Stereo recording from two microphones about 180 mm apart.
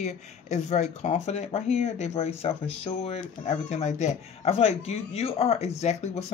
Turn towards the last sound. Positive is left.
turn(degrees=40)  # may be behind; listen again after turning